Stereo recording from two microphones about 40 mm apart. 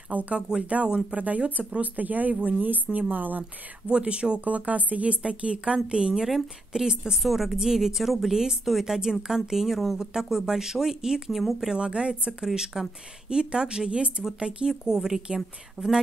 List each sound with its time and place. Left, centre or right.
0.1 s speech: right
1.8 s speech: right
3.9 s speech: right
4.5 s speech: right
6.2 s a woman's voice: centre
7.2 s a woman's voice: centre
8.3 s a woman's voice: centre
11.3 s a woman's voice: centre
11.7 s a woman's voice: right